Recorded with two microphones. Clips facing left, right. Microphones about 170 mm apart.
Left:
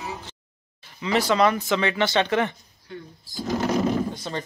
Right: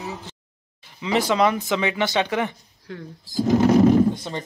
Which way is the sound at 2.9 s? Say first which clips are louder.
Right 2 dB; 90° right.